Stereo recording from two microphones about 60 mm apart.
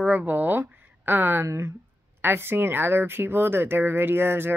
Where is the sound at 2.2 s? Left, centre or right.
Right.